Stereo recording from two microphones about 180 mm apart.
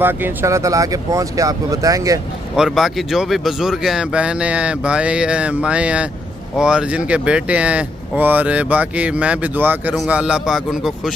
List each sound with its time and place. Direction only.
0.0 s speech: 10° right (ahead or behind)
2.5 s speech: centre (ahead or behind)